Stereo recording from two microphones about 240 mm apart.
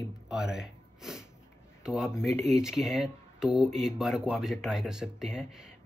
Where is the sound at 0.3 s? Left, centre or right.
Centre.